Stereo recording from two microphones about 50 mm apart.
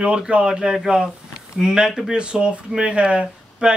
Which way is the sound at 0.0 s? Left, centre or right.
Right.